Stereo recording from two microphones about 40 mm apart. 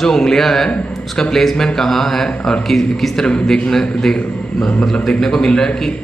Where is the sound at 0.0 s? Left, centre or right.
Centre.